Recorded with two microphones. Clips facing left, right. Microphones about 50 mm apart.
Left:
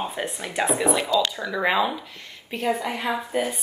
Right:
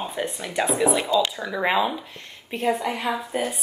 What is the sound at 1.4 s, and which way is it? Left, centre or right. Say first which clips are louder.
Speech: even; centre.